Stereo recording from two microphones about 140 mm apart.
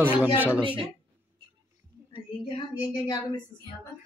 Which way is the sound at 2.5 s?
30° left (ahead or behind).